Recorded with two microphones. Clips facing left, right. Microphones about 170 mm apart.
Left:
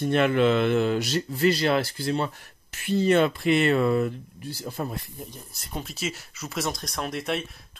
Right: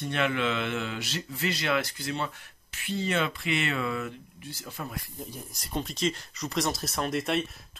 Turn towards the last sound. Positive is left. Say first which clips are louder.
# right 1 dB
turn(degrees=0)  # may be behind; listen again after turning